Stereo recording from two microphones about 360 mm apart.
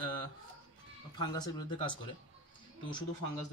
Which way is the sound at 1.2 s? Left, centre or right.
Centre.